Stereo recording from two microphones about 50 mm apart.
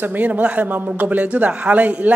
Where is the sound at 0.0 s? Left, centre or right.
Right.